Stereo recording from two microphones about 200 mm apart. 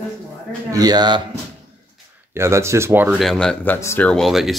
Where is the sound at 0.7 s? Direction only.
20° right (ahead or behind).